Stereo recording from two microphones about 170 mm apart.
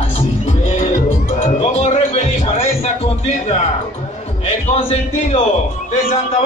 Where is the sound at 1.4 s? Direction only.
40° left (ahead or behind).